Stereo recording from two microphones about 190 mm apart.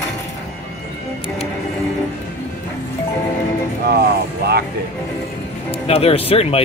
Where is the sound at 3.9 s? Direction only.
55° right (ahead or behind).